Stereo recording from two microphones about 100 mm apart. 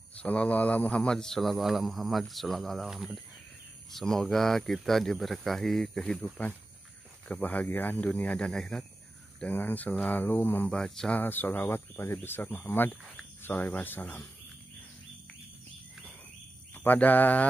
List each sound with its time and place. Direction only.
0.2 s speech: 15° left (ahead or behind)
9.4 s speech: 20° left (ahead or behind)
10.7 s speech: 5° left (ahead or behind)
11.1 s speech: 20° left (ahead or behind)
16.7 s speech: 15° left (ahead or behind)